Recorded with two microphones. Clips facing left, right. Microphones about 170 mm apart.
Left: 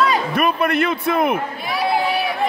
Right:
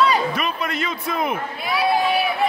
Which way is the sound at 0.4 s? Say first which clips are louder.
Left 7 dB; 60° left (ahead or behind).